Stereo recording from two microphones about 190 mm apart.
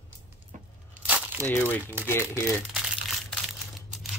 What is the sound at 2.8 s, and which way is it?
Crumpling, 5° right (ahead or behind).